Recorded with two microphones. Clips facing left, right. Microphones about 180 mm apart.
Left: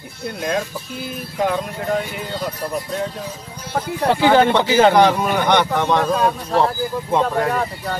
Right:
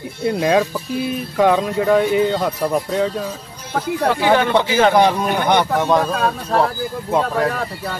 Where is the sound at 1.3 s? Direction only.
80° right.